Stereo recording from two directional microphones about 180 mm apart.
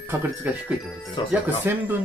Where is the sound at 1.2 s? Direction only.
25° left (ahead or behind).